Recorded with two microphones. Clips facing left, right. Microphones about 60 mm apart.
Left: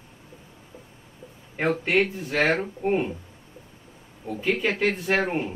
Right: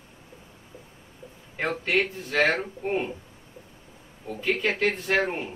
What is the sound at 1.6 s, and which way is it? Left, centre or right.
Speech, centre.